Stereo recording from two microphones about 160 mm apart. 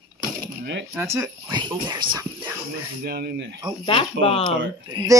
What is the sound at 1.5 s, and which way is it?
Speech, 30° right (ahead or behind).